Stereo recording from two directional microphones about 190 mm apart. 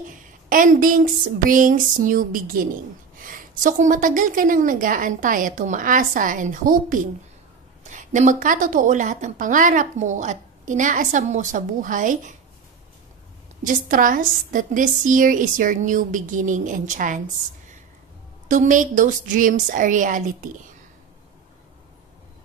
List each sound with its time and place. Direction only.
0.5 s a woman's voice: 45° right (ahead or behind)
13.7 s a woman's voice: 45° right (ahead or behind)
18.5 s a woman's voice: 45° right (ahead or behind)